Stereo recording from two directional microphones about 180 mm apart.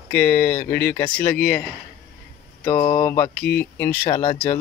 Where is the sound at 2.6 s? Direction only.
20° left (ahead or behind).